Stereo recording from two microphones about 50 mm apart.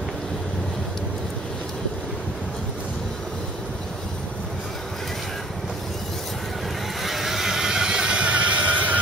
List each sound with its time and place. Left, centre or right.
7.0 s vehicle: centre; by 9.0 s right